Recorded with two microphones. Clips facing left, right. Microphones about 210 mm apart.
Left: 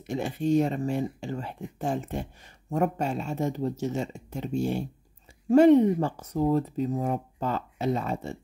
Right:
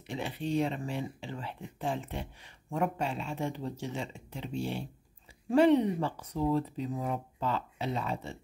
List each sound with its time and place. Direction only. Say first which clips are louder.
0.0 s speech: left 7 dB; 45° left (ahead or behind)